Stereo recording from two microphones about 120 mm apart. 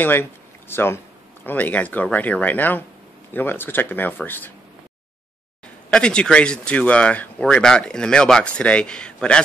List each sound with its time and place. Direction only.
0.0 s speech: 15° left (ahead or behind)
5.9 s speech: 5° left (ahead or behind)